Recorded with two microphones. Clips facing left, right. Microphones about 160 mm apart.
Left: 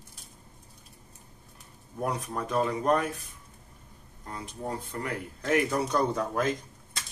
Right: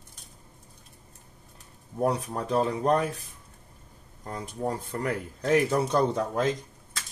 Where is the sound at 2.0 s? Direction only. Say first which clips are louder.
Right 4 dB; 35° right (ahead or behind).